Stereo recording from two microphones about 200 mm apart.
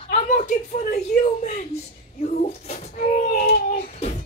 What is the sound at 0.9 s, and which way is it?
Speech, 35° left (ahead or behind).